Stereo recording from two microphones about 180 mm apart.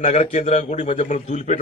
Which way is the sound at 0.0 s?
40° left (ahead or behind).